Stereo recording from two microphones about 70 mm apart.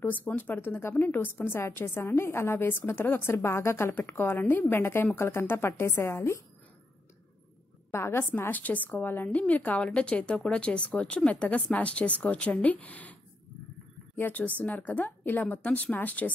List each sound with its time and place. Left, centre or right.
0.0 s a woman's voice: left
7.9 s a woman's voice: left